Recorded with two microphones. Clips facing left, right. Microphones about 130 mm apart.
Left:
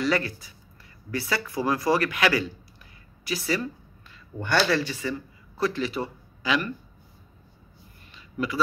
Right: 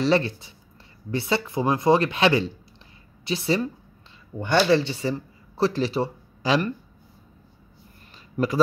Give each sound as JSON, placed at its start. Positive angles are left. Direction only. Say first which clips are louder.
{"t": 0.0, "sound": "speech", "louder": "right 4 dB", "side_deg": -25}
{"t": 8.4, "sound": "speech", "louder": "right 5 dB", "side_deg": -35}